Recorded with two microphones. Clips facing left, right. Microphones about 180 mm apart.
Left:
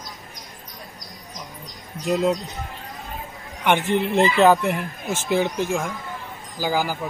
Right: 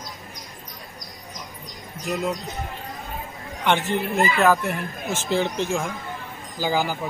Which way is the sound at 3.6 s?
20° left (ahead or behind).